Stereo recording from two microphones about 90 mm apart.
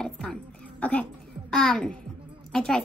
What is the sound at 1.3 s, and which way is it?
A child's voice, 5° left (ahead or behind).